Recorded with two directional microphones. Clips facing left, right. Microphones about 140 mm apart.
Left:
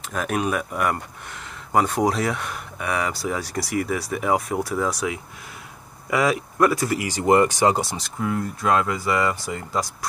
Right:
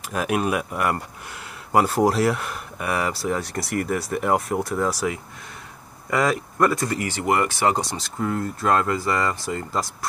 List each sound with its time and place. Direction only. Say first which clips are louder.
0.1 s speech: right 1 dB; 5° right (ahead or behind)
7.0 s speech: left 7 dB; 15° left (ahead or behind)
7.8 s speech: even; centre (ahead or behind)